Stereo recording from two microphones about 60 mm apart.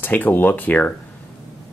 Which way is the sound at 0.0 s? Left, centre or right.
Left.